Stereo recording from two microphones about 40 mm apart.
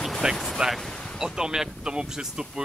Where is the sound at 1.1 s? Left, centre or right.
Centre.